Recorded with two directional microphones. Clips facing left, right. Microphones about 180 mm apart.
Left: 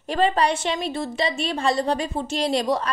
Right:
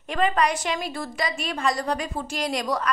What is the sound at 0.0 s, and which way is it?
A woman's voice, 30° left (ahead or behind).